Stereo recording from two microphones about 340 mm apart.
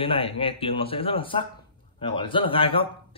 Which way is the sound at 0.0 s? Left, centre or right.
Centre.